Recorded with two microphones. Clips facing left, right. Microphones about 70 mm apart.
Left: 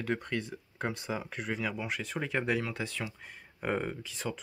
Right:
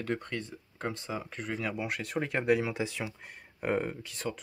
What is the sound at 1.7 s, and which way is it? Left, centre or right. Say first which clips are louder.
Speech: right 2 dB; centre.